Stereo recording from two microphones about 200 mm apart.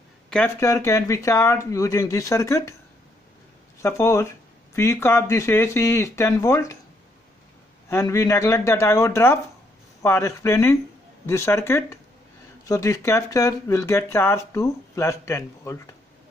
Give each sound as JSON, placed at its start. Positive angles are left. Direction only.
{"t": 0.3, "sound": "speech", "side_deg": 10}
{"t": 3.8, "sound": "speech", "side_deg": 15}
{"t": 7.9, "sound": "speech", "side_deg": 15}